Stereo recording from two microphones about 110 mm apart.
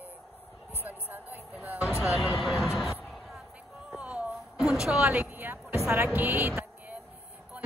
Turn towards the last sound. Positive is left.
turn(degrees=-20)  # may be behind; listen again after turning